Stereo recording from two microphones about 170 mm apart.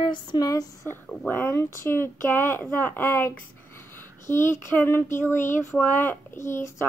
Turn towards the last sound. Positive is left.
turn(degrees=15)  # may be behind; listen again after turning